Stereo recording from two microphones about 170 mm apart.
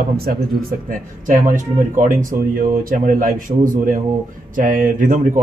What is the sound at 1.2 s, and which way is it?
Speech, 50° right (ahead or behind).